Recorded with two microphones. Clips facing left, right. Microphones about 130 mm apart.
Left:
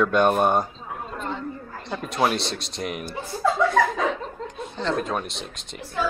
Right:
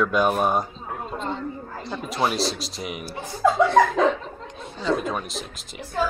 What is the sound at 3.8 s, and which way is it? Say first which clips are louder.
Speech: right 4 dB; 40° right (ahead or behind).